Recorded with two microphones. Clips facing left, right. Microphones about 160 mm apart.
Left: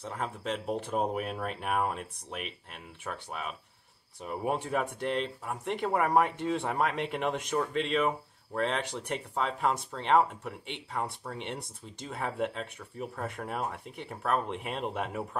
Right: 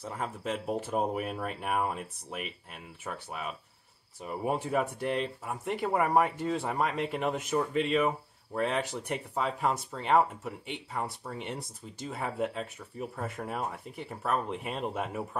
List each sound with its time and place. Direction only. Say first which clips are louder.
0.0 s speech: even; 5° right (ahead or behind)